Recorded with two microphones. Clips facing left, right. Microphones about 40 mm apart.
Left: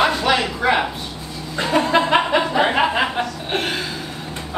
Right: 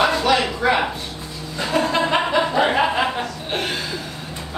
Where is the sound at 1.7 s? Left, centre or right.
Centre.